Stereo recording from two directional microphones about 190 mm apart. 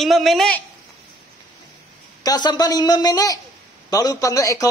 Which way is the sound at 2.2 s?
20° left (ahead or behind).